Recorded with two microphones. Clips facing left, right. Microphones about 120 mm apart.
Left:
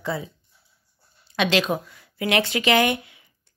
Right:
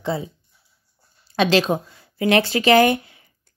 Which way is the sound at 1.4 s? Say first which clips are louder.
Right 4 dB; 35° right (ahead or behind).